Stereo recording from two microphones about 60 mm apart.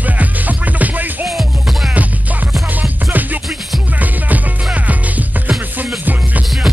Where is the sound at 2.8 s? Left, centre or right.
Right.